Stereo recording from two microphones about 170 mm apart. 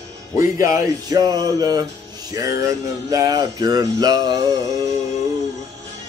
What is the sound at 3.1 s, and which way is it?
Music, 20° right (ahead or behind).